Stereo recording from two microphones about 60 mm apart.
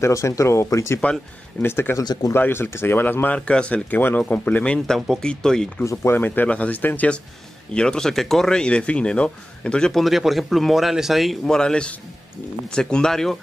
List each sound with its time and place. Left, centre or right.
0.0 s speech: left
1.0 s speech: left
1.6 s speech: left
3.3 s speech: centre
3.9 s speech: left
4.6 s speech: centre
6.1 s speech: left
7.7 s speech: centre
9.9 s speech: centre
11.4 s speech: centre